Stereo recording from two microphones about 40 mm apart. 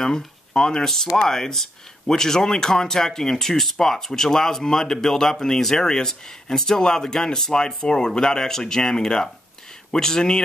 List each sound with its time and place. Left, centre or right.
0.0 s speech: centre